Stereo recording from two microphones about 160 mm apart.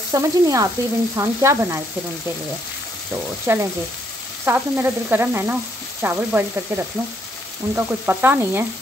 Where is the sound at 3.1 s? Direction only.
15° right (ahead or behind).